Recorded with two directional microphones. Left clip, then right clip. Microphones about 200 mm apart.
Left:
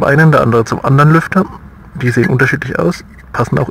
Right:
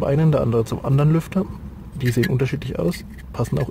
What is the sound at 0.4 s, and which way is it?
Speech, 25° left (ahead or behind).